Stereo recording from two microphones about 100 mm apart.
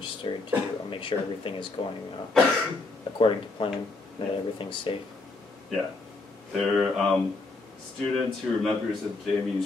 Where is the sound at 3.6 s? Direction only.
55° left (ahead or behind).